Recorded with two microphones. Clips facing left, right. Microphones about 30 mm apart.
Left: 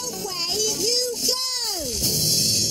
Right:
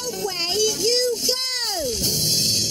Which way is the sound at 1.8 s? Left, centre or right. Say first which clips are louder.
Right 2 dB; centre.